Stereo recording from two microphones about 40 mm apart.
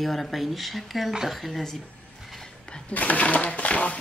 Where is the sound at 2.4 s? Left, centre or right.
Left.